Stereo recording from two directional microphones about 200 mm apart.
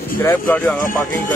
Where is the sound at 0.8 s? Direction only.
40° left (ahead or behind).